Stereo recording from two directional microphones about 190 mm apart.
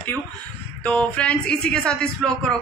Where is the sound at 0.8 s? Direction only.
5° left (ahead or behind).